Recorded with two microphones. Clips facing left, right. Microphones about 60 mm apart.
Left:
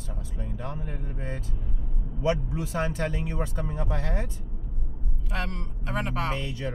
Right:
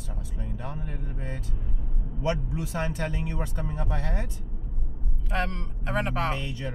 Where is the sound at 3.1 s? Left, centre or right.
Centre.